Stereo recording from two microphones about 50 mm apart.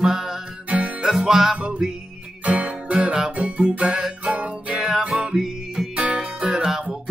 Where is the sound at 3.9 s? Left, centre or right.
Centre.